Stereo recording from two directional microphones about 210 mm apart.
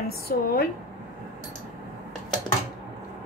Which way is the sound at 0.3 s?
45° left (ahead or behind).